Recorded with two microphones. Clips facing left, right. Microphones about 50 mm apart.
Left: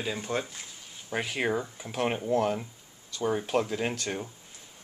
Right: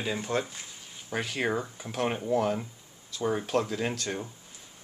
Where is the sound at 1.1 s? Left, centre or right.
Centre.